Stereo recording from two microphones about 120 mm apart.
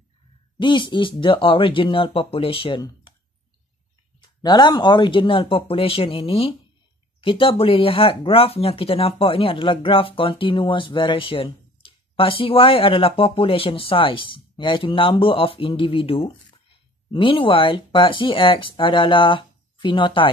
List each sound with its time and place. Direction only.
0.6 s speech: 40° left (ahead or behind)
4.4 s speech: 35° left (ahead or behind)